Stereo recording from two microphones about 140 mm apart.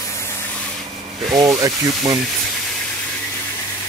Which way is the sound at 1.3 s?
25° right (ahead or behind).